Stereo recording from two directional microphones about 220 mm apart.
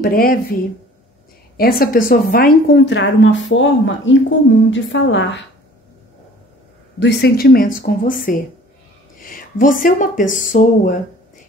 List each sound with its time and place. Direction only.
0.0 s speech: 40° left (ahead or behind)
1.6 s a woman's voice: 40° left (ahead or behind)
7.0 s speech: 50° left (ahead or behind); by 11.0 s 35° left (ahead or behind)